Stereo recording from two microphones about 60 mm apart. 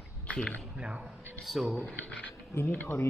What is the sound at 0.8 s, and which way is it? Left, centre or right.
Speech, centre.